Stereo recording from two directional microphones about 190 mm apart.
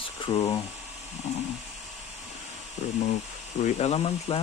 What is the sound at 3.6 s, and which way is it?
Speech, 35° left (ahead or behind).